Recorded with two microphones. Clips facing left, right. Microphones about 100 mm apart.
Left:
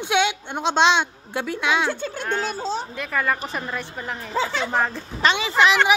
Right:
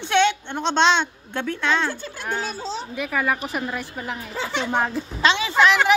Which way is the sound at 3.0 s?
10° right (ahead or behind).